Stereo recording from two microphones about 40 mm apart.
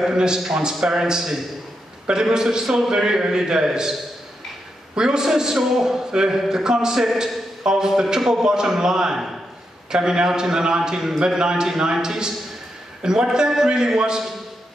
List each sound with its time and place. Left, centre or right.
0.1 s a man's voice: centre
4.9 s a man's voice: centre